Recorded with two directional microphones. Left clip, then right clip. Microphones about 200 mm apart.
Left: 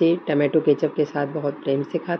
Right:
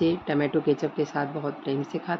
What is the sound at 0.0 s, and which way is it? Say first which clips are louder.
Speech: left 5 dB; 5° left (ahead or behind).